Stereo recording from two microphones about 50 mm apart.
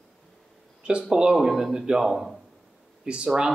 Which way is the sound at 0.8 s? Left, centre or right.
Centre.